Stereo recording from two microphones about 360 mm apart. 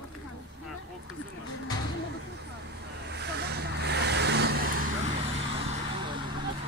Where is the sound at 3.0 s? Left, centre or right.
Right.